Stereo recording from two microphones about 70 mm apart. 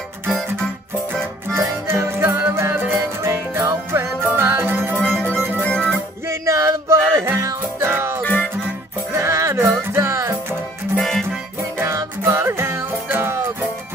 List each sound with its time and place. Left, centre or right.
1.9 s music: right
5.6 s music: centre
6.2 s music: right
8.2 s music: left
9.1 s music: right
11.0 s music: centre
11.8 s music: right